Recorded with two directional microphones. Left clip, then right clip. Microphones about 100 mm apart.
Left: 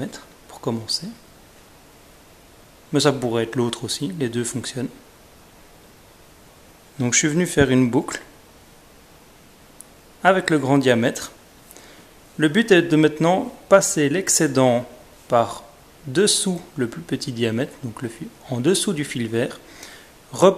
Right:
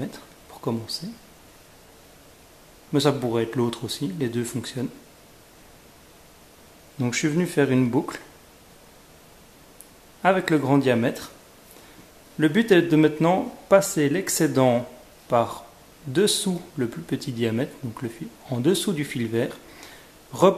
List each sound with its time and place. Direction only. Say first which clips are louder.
0.0 s a sound: left 3 dB; 25° left (ahead or behind)
2.9 s speech: left 3 dB; 25° left (ahead or behind)
7.0 s speech: left 4 dB; 30° left (ahead or behind)
10.2 s speech: left 3 dB; 25° left (ahead or behind)
12.4 s speech: left 3 dB; 25° left (ahead or behind)